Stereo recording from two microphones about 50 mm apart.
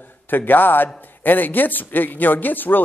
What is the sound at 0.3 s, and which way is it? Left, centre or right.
Speech, left.